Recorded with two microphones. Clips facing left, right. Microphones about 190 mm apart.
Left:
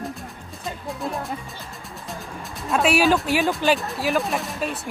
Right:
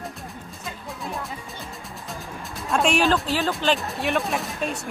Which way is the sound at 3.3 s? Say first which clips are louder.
Left 3 dB; 15° left (ahead or behind).